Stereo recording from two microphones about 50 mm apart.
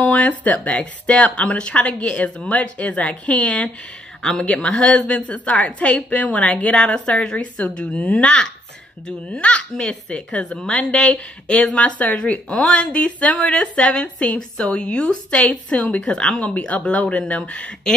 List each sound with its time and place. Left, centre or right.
0.0 s speech: left; by 4.5 s centre
4.5 s speech: left
16.0 s speech: centre